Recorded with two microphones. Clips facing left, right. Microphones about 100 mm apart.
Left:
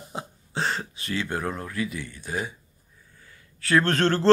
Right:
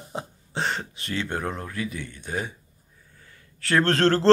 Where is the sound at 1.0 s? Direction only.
30° right (ahead or behind).